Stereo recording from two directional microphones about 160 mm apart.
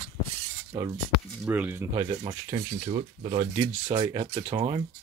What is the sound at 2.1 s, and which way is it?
Speech, 25° right (ahead or behind).